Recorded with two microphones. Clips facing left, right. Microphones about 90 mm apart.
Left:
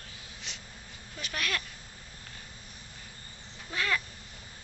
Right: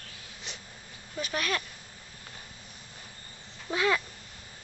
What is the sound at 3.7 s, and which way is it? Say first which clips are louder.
Speech: right 5 dB; 15° right (ahead or behind).